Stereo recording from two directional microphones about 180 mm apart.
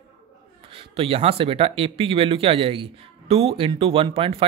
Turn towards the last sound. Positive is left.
turn(degrees=-30)  # may be behind; listen again after turning